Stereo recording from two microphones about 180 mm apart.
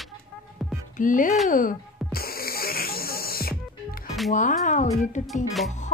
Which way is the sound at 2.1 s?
55° left (ahead or behind).